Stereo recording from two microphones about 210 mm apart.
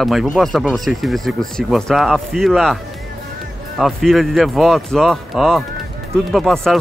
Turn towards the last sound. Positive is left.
turn(degrees=0)  # may be behind; listen again after turning